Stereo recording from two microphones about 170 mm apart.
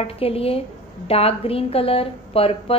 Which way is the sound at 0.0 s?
35° left (ahead or behind).